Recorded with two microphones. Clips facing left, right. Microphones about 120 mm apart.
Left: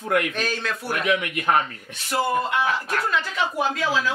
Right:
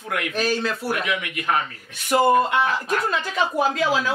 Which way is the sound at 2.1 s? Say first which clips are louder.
Right 6 dB; 25° right (ahead or behind).